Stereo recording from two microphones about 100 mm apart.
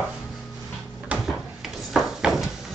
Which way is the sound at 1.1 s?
10° right (ahead or behind).